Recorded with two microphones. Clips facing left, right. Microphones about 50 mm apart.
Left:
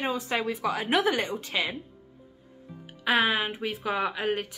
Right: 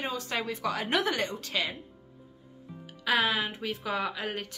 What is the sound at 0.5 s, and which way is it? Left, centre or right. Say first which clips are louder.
Speech: left 2 dB; centre.